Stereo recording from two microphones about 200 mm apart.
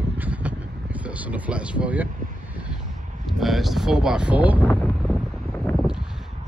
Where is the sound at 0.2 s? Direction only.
5° right (ahead or behind).